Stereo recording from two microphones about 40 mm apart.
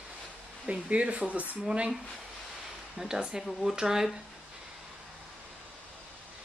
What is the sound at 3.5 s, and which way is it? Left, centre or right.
Speech, centre.